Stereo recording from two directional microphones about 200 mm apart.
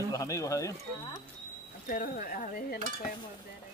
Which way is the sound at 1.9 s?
40° left (ahead or behind).